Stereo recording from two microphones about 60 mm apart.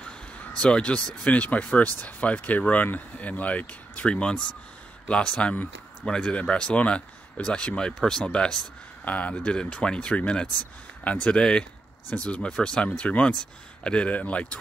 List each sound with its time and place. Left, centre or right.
0.6 s speech: centre